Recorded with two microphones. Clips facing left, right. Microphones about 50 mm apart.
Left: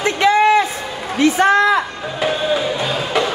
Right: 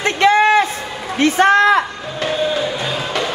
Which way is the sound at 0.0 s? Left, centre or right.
Right.